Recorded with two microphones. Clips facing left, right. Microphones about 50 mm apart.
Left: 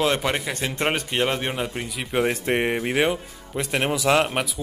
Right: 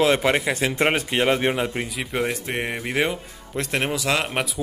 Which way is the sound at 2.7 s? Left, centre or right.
Centre.